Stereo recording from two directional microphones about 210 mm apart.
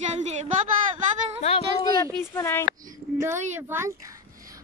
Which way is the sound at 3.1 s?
15° right (ahead or behind).